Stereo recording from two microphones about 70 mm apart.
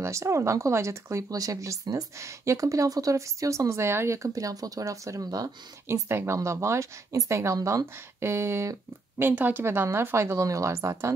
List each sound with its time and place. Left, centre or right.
0.0 s speech: right
5.9 s speech: right
9.2 s speech: right